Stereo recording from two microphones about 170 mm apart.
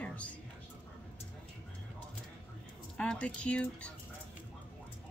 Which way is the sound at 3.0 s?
5° left (ahead or behind).